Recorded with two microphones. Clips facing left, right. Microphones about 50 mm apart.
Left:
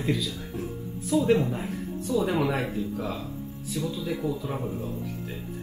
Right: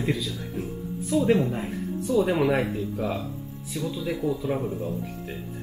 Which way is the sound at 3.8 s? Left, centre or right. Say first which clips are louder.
Right 2 dB; centre.